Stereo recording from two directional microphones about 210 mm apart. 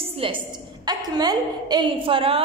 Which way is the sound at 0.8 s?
20° right (ahead or behind).